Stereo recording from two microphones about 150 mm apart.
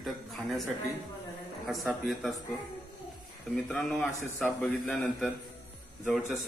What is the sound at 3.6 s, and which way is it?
A man's voice, centre (ahead or behind).